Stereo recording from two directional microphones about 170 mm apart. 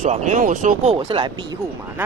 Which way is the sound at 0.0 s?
45° right (ahead or behind).